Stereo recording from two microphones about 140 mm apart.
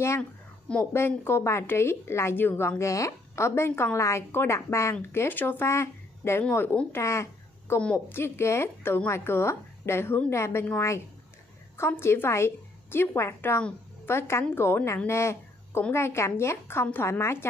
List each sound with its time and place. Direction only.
0.9 s a woman's voice: 15° left (ahead or behind)
7.0 s a sound: 20° left (ahead or behind)
7.8 s a woman's voice: 10° left (ahead or behind)